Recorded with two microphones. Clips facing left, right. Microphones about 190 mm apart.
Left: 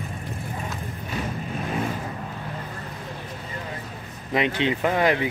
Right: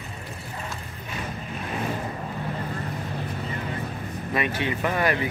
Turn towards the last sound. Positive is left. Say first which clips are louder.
# left 3 dB
turn(degrees=20)  # may be behind; listen again after turning